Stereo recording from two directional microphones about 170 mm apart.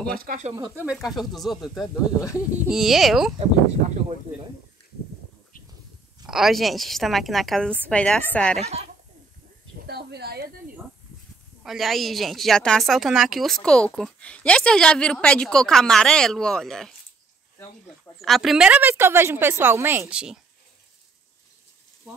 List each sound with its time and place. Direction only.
0.7 s a woman's voice: 5° right (ahead or behind)
6.2 s a woman's voice: centre (ahead or behind)
8.5 s speech: 40° right (ahead or behind)
9.8 s speech: 75° right (ahead or behind)
11.6 s a woman's voice: centre (ahead or behind)
18.2 s a woman's voice: centre (ahead or behind)